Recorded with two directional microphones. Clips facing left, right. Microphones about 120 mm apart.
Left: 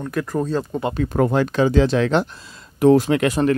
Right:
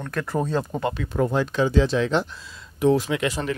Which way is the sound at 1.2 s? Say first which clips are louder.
Left 4 dB; 70° left (ahead or behind).